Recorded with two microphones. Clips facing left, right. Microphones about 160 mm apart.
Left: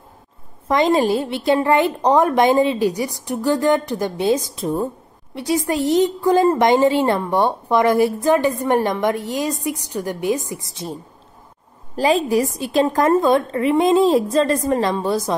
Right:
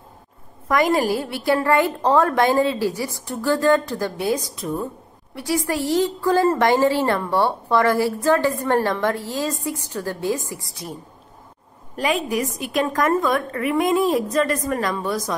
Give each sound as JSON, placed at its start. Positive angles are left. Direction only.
{"t": 0.7, "sound": "a woman's voice", "side_deg": 20}